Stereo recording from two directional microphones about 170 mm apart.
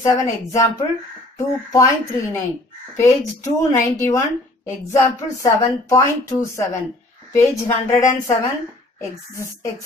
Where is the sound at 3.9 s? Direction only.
15° left (ahead or behind).